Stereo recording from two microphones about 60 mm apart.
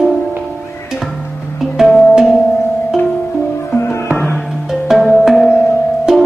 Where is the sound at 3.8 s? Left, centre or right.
Left.